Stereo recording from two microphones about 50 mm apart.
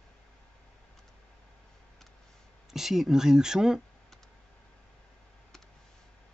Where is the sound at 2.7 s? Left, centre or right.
Centre.